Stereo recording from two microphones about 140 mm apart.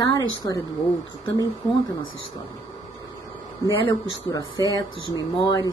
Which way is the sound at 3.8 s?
30° left (ahead or behind).